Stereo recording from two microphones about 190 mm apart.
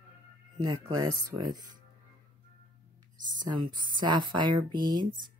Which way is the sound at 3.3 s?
20° right (ahead or behind).